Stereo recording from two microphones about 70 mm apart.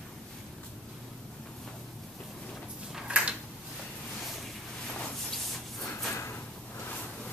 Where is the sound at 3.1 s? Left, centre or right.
Centre.